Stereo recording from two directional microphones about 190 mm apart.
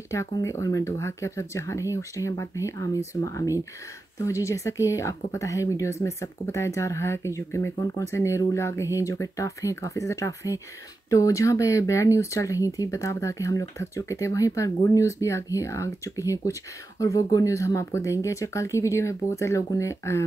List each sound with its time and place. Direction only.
0.1 s speech: 15° left (ahead or behind)